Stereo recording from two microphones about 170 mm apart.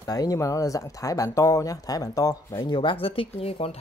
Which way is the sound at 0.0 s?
20° left (ahead or behind).